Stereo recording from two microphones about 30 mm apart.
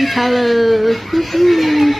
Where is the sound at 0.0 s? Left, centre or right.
Centre.